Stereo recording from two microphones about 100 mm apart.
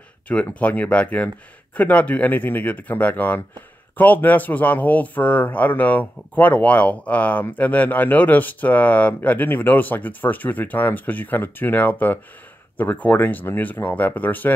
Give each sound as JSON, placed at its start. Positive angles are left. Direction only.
{"t": 0.3, "sound": "speech", "side_deg": 15}